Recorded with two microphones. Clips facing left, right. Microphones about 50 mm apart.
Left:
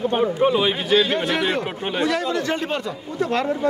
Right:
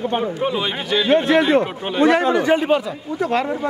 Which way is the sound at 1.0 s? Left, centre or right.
Right.